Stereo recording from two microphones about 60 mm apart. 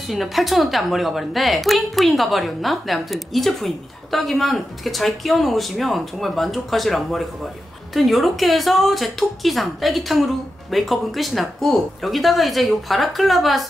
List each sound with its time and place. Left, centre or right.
0.1 s a woman's voice: centre